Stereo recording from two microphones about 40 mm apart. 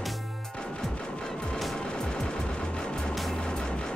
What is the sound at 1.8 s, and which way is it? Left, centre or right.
Music, left.